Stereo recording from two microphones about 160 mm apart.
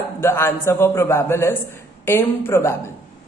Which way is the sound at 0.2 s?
15° left (ahead or behind).